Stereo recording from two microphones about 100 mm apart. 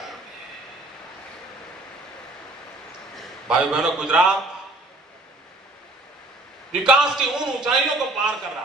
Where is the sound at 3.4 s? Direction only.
5° right (ahead or behind).